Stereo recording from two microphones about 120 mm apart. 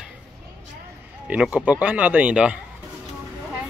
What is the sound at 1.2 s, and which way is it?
Speech, 10° right (ahead or behind).